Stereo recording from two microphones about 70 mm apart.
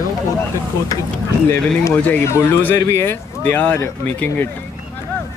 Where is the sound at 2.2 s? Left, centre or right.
Left.